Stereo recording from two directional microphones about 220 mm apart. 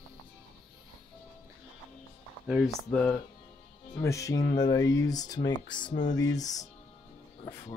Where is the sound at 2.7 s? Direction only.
5° left (ahead or behind).